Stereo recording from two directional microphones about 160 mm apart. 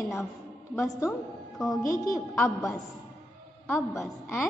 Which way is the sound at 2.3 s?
Centre (ahead or behind).